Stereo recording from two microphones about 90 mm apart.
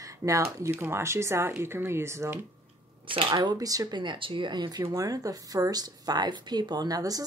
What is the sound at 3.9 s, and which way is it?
Speech, 60° right (ahead or behind).